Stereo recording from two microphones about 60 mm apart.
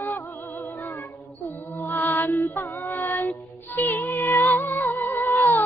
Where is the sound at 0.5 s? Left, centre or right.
Left.